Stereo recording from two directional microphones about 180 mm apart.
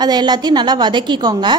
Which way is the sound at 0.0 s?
25° right (ahead or behind).